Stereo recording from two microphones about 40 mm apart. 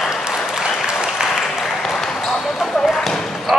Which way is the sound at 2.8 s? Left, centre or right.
Centre.